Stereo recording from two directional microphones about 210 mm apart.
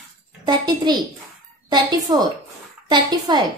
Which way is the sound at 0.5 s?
20° right (ahead or behind).